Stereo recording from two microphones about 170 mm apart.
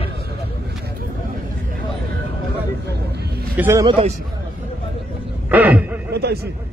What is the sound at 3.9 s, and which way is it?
Speech, 35° right (ahead or behind).